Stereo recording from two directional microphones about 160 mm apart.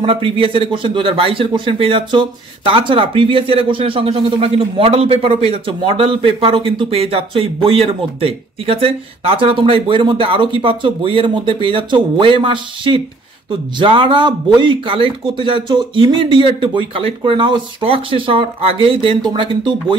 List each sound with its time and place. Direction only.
0.0 s speech: 35° right (ahead or behind)